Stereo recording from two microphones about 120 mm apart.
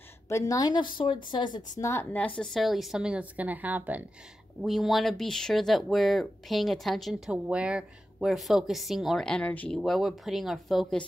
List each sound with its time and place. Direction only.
0.3 s speech: 25° left (ahead or behind)
1.8 s a woman's voice: 25° left (ahead or behind)
2.1 s a woman's voice: 10° left (ahead or behind); by 4.0 s 15° right (ahead or behind)
4.6 s speech: centre (ahead or behind)
9.8 s speech: centre (ahead or behind)